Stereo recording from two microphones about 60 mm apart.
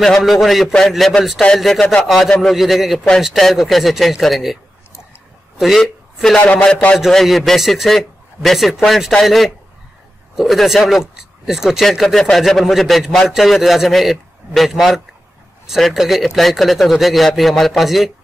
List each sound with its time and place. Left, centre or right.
0.2 s a man's voice: centre
5.8 s speech: centre
6.4 s a man's voice: left
7.1 s a man's voice: centre